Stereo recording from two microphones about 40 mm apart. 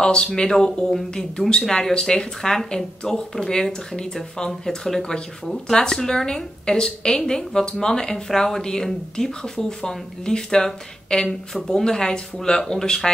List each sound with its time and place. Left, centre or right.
0.0 s speech: centre